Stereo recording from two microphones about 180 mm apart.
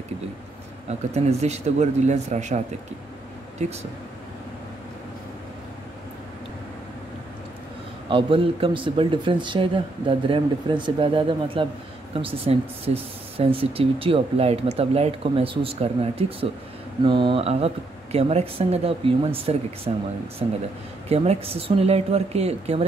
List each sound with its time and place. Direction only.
0.8 s speech: 40° right (ahead or behind)
8.1 s speech: 30° right (ahead or behind)